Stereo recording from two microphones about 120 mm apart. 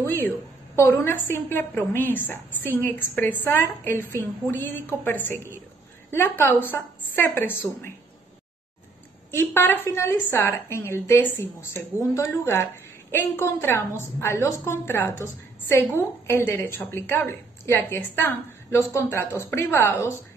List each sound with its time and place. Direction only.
0.0 s a woman's voice: 15° left (ahead or behind)
9.3 s a woman's voice: 20° left (ahead or behind)